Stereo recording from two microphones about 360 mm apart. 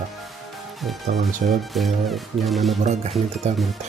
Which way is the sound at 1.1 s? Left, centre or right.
Right.